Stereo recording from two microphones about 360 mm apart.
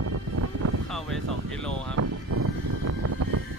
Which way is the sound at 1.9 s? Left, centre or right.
Right.